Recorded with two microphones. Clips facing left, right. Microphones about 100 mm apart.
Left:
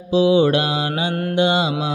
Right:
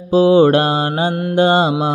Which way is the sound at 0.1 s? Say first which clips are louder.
Right 5 dB; 45° right (ahead or behind).